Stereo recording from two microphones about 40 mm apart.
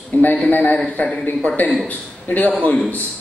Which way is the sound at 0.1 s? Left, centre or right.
Left.